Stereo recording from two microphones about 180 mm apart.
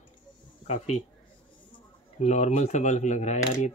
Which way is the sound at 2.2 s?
40° left (ahead or behind).